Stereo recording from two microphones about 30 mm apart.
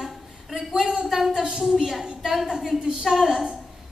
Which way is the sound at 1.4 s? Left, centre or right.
Centre.